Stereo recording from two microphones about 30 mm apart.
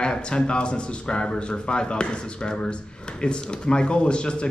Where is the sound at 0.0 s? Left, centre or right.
Left.